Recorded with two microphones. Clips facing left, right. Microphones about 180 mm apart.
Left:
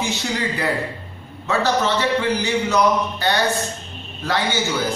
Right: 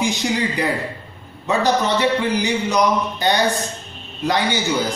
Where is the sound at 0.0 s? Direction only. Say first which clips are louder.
Right 3 dB; 15° right (ahead or behind).